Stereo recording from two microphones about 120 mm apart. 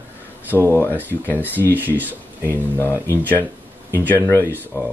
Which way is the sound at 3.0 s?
15° left (ahead or behind).